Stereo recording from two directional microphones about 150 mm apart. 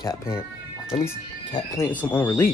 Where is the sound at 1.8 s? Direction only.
10° left (ahead or behind).